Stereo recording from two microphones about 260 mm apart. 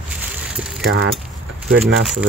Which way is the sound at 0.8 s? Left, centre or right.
Right.